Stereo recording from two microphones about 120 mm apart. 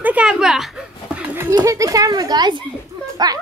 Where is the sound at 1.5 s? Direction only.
30° right (ahead or behind).